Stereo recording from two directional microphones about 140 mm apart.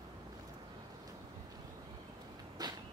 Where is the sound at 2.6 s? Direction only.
30° right (ahead or behind).